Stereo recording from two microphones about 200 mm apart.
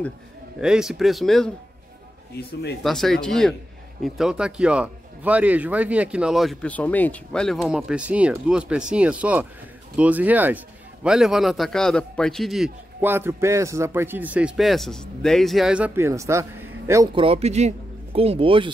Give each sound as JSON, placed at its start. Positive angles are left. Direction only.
{"t": 0.6, "sound": "speech", "side_deg": -5}
{"t": 2.3, "sound": "speech", "side_deg": 55}
{"t": 2.8, "sound": "a man's voice", "side_deg": 0}